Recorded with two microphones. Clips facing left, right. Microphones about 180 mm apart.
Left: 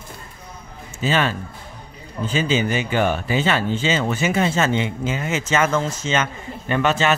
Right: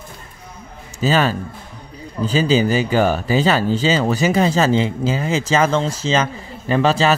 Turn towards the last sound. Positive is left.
turn(degrees=-35)  # may be behind; listen again after turning